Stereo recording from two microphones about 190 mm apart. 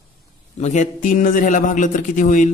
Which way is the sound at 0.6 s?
40° left (ahead or behind).